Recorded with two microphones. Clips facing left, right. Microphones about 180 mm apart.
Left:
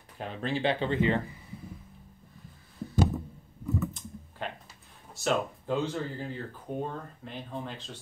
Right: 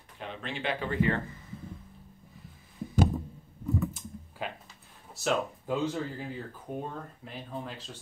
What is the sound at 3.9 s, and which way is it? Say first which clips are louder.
Typing: right 1 dB; 5° right (ahead or behind).